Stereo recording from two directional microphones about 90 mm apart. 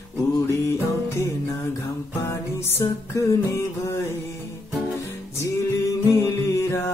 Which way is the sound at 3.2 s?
40° left (ahead or behind).